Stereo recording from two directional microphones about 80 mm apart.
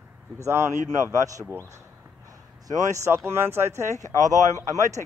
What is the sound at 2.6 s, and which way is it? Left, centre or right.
Speech, right.